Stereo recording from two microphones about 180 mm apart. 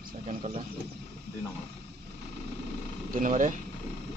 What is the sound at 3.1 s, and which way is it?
Speech, 45° right (ahead or behind).